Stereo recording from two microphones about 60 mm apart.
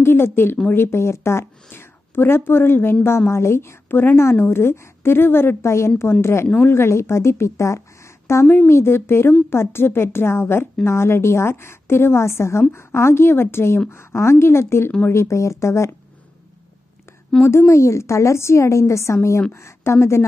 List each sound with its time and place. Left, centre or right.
0.0 s a woman's voice: left
17.5 s a woman's voice: left